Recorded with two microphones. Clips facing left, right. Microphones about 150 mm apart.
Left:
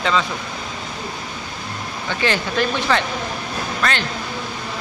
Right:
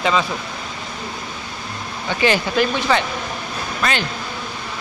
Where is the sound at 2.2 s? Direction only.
10° right (ahead or behind).